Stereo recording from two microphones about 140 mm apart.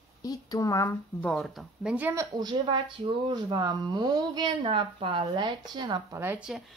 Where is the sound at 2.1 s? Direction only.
30° right (ahead or behind).